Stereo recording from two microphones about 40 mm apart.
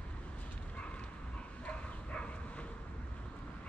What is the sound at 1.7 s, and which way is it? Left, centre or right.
Bow-wow, left.